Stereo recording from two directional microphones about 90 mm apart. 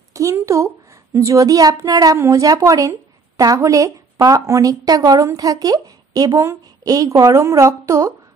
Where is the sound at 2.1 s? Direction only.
35° right (ahead or behind).